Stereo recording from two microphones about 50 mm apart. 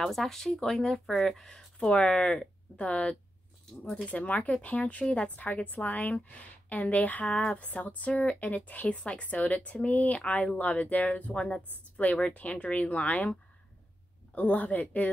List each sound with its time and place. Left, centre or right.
0.0 s a woman's voice: centre; by 15.0 s left